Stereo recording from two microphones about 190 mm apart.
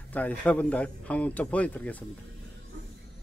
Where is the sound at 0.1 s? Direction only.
10° left (ahead or behind).